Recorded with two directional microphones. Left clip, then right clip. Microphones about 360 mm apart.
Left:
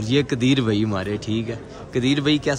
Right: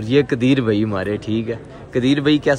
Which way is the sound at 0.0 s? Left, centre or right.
Centre.